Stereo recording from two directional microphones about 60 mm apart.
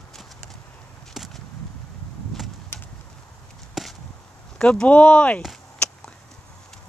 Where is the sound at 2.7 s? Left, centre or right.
Left.